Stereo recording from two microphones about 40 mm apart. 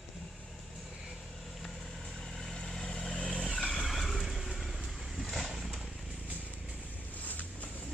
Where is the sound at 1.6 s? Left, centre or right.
Centre.